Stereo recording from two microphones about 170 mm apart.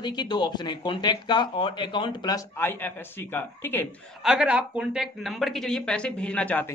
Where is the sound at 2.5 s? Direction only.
10° left (ahead or behind).